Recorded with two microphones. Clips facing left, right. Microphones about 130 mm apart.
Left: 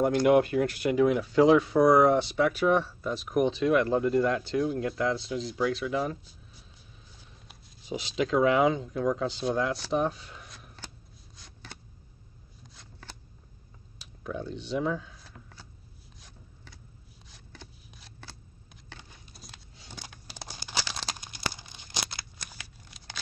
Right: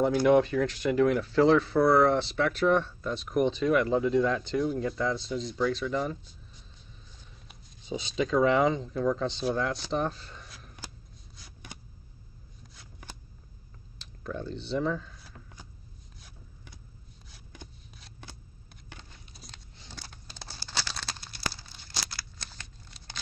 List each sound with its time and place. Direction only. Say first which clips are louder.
0.0 s speech: even; 10° left (ahead or behind)
13.0 s shuffling cards: right 1 dB; 15° right (ahead or behind)
13.9 s speech: left 1 dB; 5° left (ahead or behind)
19.3 s a sound: even; 5° left (ahead or behind); by 22.6 s 20° left (ahead or behind)